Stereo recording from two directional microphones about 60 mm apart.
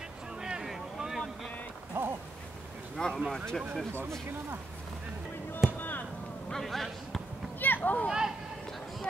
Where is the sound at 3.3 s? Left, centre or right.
Centre.